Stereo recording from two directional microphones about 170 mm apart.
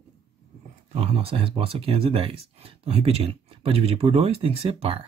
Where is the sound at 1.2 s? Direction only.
30° right (ahead or behind).